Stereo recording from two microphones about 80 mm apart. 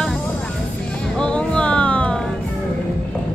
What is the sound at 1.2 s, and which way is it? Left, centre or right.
Music, centre.